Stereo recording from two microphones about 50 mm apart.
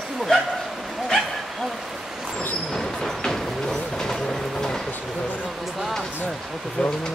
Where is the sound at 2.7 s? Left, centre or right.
Centre.